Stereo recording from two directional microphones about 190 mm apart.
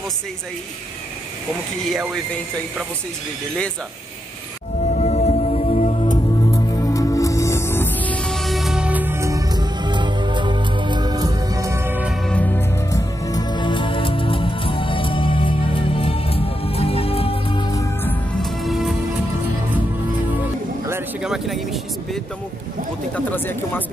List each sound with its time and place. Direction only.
2.0 s speech: 5° right (ahead or behind)
4.8 s music: 40° left (ahead or behind); by 12.2 s 10° right (ahead or behind)
12.3 s music: 10° left (ahead or behind); by 17.8 s 25° left (ahead or behind)
18.0 s music: centre (ahead or behind)
20.9 s a sound: 5° right (ahead or behind)
23.1 s a sound: 10° left (ahead or behind)